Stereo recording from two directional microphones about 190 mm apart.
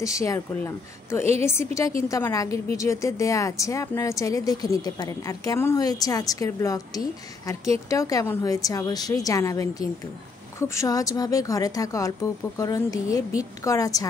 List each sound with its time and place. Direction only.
0.0 s a woman's voice: 15° left (ahead or behind)